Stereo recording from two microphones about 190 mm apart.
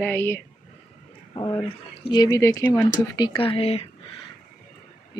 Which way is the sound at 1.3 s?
20° left (ahead or behind).